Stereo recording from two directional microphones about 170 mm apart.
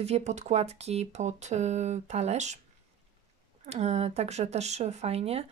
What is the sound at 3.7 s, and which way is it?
Speech, 40° right (ahead or behind).